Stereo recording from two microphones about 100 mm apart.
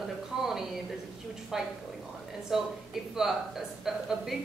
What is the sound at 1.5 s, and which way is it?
Speech, 5° right (ahead or behind).